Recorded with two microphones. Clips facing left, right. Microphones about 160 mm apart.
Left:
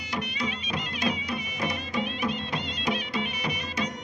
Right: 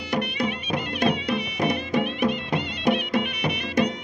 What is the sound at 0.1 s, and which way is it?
Music, 55° right (ahead or behind).